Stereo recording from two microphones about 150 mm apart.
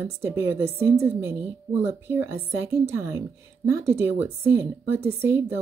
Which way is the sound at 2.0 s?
15° right (ahead or behind).